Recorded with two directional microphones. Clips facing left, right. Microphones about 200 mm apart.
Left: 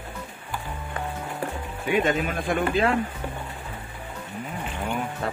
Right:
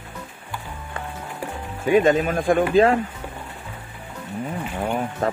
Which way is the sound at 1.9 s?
40° right (ahead or behind).